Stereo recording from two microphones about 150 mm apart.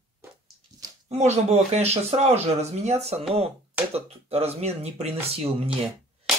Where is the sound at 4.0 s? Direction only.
45° right (ahead or behind).